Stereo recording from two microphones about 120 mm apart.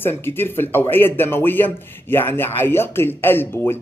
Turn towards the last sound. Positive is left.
turn(degrees=20)  # may be behind; listen again after turning